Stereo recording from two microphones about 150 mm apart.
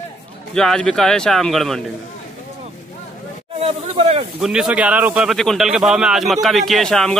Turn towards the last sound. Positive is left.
turn(degrees=5)  # may be behind; listen again after turning